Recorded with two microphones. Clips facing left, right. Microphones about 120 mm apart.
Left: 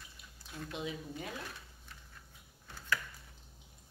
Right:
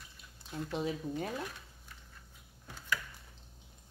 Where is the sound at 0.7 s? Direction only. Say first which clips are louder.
Right 6 dB; 40° right (ahead or behind).